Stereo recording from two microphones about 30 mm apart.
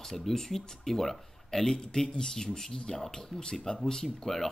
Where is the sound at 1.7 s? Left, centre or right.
Left.